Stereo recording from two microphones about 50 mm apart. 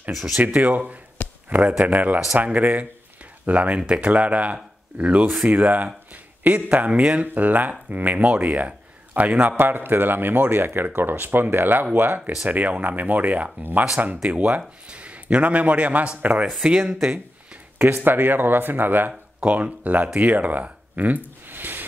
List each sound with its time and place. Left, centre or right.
0.1 s speech: centre
0.4 s a man's voice: right
7.2 s a man's voice: right
17.7 s speech: right
19.4 s a man's voice: right
21.5 s a sound: right